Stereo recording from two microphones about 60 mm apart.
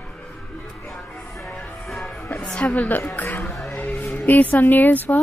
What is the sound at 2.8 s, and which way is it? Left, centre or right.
Speech, left.